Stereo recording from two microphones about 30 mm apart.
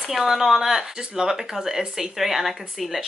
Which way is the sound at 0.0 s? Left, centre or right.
Centre.